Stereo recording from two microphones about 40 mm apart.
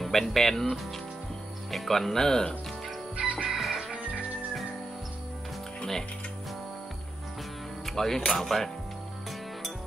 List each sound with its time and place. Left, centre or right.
0.0 s speech: centre
3.2 s music: right
3.4 s music: centre
7.8 s speech: centre